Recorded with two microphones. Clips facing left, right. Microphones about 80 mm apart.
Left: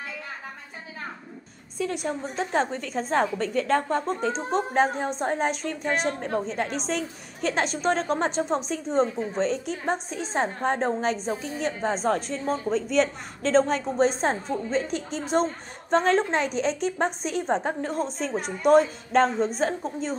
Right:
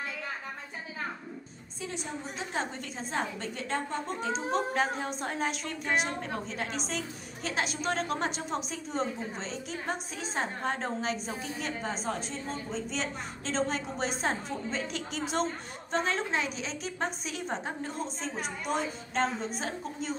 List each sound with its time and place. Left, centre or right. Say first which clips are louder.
1.8 s a woman's voice: left 10 dB; left
2.3 s a woman's voice: left 9 dB; left
4.5 s a woman's voice: left 6 dB; left
13.9 s a woman's voice: left 10 dB; left
15.9 s a woman's voice: left 9 dB; left